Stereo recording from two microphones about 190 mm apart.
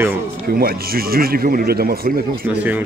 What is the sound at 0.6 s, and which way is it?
Speech, 50° right (ahead or behind).